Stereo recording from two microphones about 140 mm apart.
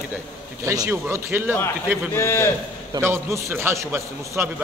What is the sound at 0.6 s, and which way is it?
Speech, 20° right (ahead or behind).